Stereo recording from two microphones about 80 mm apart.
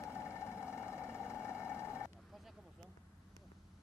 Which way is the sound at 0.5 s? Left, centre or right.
Centre.